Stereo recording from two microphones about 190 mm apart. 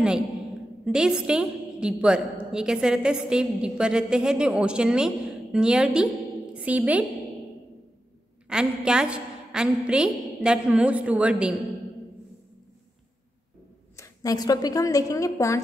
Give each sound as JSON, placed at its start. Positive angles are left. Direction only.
{"t": 0.8, "sound": "a woman's voice", "side_deg": -5}
{"t": 8.5, "sound": "a woman's voice", "side_deg": -5}
{"t": 13.9, "sound": "a woman's voice", "side_deg": 15}